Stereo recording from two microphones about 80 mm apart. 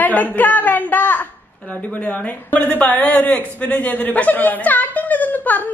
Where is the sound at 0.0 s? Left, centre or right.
Left.